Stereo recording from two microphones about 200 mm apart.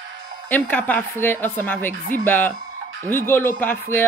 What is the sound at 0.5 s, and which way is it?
Speech, 10° left (ahead or behind).